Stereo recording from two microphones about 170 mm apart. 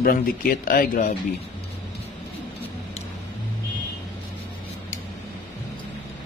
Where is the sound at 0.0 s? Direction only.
60° left (ahead or behind).